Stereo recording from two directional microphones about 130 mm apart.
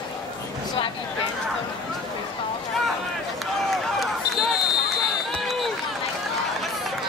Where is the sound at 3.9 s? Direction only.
Centre (ahead or behind).